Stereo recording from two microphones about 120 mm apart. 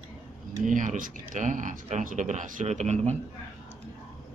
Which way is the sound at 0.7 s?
90° right.